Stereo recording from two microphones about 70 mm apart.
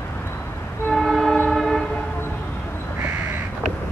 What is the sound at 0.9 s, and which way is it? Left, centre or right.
Train, centre.